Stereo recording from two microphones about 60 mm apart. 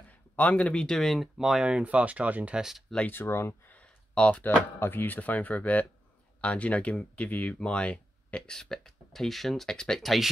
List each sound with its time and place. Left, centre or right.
0.1 s speech: left
0.9 s speech: centre
1.7 s speech: right
2.5 s speech: centre
3.1 s speech: left
3.6 s speech: left; by 10.3 s centre